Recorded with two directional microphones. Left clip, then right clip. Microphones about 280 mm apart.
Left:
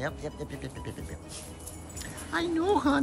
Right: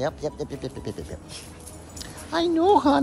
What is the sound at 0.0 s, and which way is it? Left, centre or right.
Speech, centre.